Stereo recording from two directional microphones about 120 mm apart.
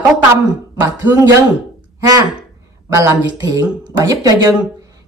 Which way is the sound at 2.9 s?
25° right (ahead or behind).